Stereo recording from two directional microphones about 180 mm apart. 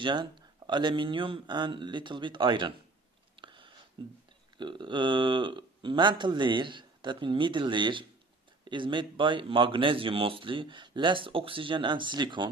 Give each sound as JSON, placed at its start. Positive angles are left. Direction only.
{"t": 0.0, "sound": "speech", "side_deg": -25}
{"t": 3.3, "sound": "a sound", "side_deg": -25}
{"t": 4.0, "sound": "speech", "side_deg": -25}